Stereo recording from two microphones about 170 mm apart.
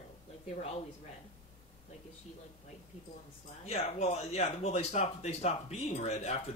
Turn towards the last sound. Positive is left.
turn(degrees=40)  # may be behind; listen again after turning